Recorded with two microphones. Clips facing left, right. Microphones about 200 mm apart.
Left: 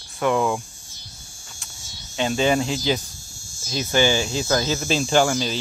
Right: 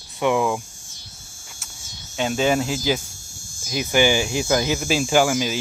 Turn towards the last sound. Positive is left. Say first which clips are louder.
# right 1 dB
turn(degrees=-10)  # may be behind; listen again after turning